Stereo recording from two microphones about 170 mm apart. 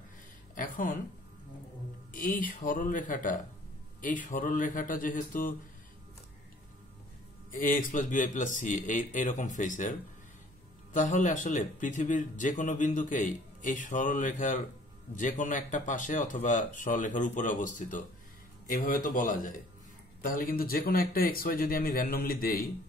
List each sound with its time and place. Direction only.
0.6 s speech: 50° left (ahead or behind)
2.1 s speech: 50° left (ahead or behind)
7.5 s speech: 55° left (ahead or behind)